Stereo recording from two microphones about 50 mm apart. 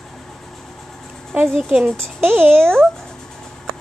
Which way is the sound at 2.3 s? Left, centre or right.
Right.